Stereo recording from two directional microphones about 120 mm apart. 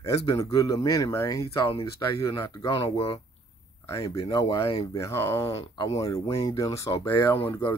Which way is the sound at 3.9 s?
30° left (ahead or behind).